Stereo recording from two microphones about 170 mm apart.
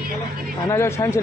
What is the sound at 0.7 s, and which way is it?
Speech, 15° left (ahead or behind).